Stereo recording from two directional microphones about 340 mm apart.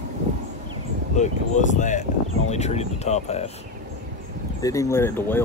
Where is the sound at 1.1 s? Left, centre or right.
Centre.